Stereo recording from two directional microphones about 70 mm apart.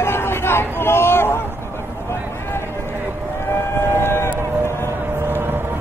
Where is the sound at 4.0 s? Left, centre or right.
Left.